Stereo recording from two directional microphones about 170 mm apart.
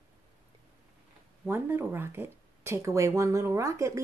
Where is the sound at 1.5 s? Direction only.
15° right (ahead or behind).